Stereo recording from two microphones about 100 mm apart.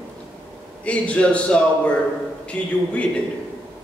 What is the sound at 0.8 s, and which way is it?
A man's voice, 10° left (ahead or behind).